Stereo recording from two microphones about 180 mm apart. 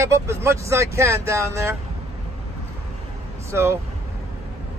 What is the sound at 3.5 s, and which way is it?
Speech, 15° right (ahead or behind).